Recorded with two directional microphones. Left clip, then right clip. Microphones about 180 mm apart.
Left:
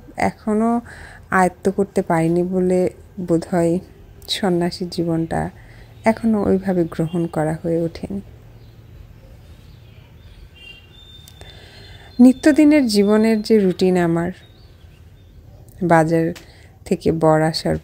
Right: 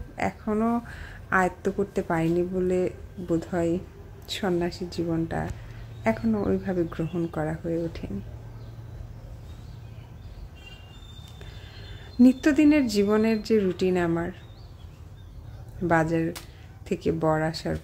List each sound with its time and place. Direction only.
0.1 s speech: 35° left (ahead or behind)
11.3 s speech: 40° left (ahead or behind)
15.9 s speech: 35° left (ahead or behind)